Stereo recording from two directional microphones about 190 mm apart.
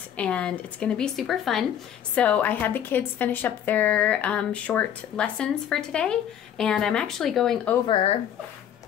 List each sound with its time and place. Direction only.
0.2 s a woman's voice: 5° left (ahead or behind)
7.8 s speech: 30° left (ahead or behind)